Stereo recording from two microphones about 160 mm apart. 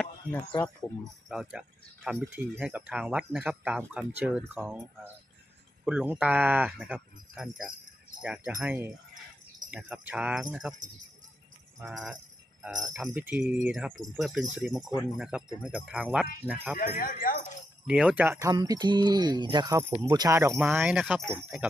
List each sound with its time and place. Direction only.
1.3 s jingle bell: 5° right (ahead or behind)
2.3 s speech: 10° right (ahead or behind)
5.9 s speech: 5° right (ahead or behind)
11.8 s jingle bell: 5° right (ahead or behind)
16.7 s speech: 65° left (ahead or behind)
17.8 s speech: 5° right (ahead or behind)
20.5 s jingle bell: 5° right (ahead or behind)
21.3 s speech: 5° right (ahead or behind)